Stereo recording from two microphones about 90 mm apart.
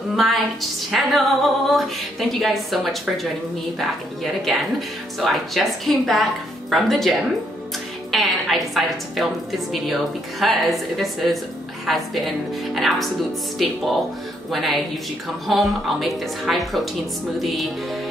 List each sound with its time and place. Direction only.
0.1 s female singing: centre (ahead or behind)
8.1 s a woman's voice: centre (ahead or behind)
10.4 s female singing: centre (ahead or behind)